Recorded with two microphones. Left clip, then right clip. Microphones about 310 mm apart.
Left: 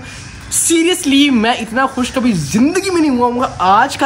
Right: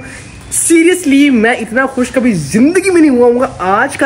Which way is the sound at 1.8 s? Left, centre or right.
Centre.